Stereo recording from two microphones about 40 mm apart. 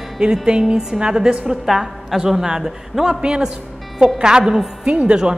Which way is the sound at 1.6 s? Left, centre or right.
Centre.